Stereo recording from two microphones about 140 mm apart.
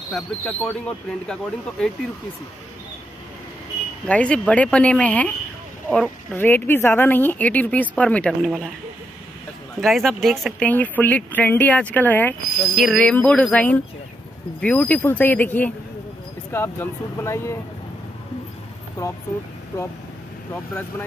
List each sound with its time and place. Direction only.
0.1 s speech: 5° left (ahead or behind)
4.1 s speech: 10° left (ahead or behind)
6.3 s speech: 15° left (ahead or behind)
9.8 s speech: centre (ahead or behind)
10.7 s speech: 10° left (ahead or behind)
19.0 s speech: 25° left (ahead or behind)